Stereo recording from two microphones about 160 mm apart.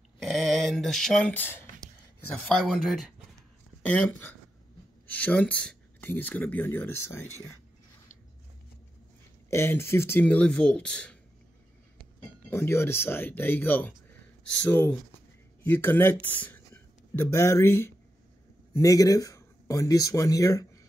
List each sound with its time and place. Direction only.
0.2 s a sound: centre (ahead or behind)
2.4 s speech: 5° left (ahead or behind)
3.8 s speech: 10° left (ahead or behind)
9.5 s speech: 15° left (ahead or behind)